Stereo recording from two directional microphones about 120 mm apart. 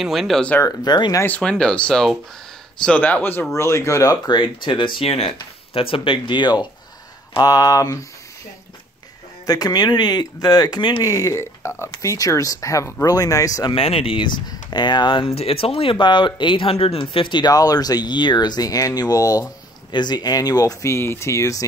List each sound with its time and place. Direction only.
0.0 s speech: centre (ahead or behind)
0.6 s speech: 35° left (ahead or behind)
1.2 s speech: 10° left (ahead or behind); by 4.4 s 25° left (ahead or behind)
4.4 s speech: 40° left (ahead or behind)
9.5 s speech: 35° left (ahead or behind)
13.7 s speech: 50° left (ahead or behind); by 21.6 s 25° left (ahead or behind)